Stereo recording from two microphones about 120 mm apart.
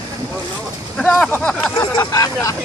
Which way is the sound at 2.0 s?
25° left (ahead or behind).